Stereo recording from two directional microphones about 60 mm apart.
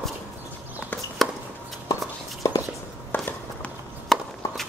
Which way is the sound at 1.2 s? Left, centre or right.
Centre.